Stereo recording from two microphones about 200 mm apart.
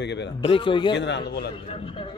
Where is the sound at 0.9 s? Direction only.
60° left (ahead or behind).